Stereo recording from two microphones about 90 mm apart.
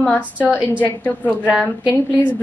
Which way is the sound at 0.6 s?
20° left (ahead or behind).